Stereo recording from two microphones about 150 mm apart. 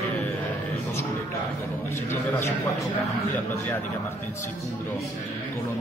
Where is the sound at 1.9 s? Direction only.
15° left (ahead or behind).